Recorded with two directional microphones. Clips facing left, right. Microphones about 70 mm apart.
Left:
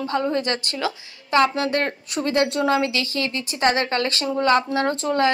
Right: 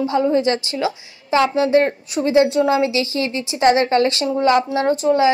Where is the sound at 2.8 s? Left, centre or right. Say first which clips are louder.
Right 5 dB; centre.